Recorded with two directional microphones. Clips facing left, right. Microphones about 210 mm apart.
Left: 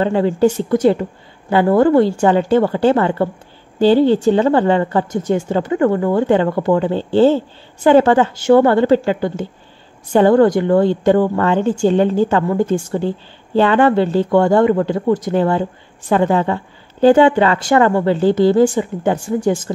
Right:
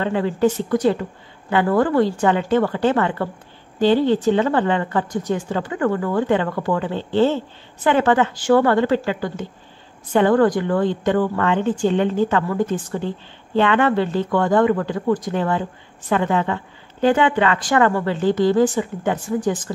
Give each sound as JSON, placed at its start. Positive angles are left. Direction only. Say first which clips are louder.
{"t": 0.0, "sound": "a woman's voice", "louder": "left 5 dB", "side_deg": 30}